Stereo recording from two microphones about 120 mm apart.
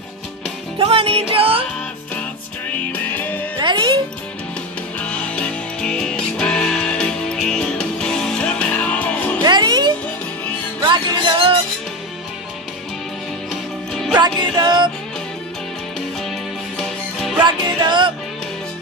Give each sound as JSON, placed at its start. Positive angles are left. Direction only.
{"t": 0.7, "sound": "music", "side_deg": -50}
{"t": 2.9, "sound": "music", "side_deg": 15}
{"t": 3.5, "sound": "music", "side_deg": -40}
{"t": 4.9, "sound": "music", "side_deg": 10}
{"t": 9.4, "sound": "music", "side_deg": -35}
{"t": 13.5, "sound": "music", "side_deg": 0}
{"t": 14.2, "sound": "music", "side_deg": -35}
{"t": 16.2, "sound": "music", "side_deg": 5}
{"t": 17.4, "sound": "music", "side_deg": -40}